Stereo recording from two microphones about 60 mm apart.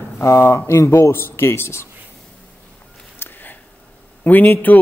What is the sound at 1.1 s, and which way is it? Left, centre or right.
Speech, left.